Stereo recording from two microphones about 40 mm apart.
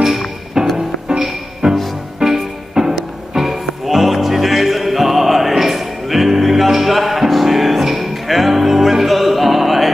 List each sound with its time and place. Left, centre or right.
0.6 s music: centre